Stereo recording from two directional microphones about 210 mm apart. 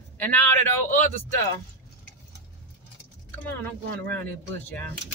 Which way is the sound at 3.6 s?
10° left (ahead or behind).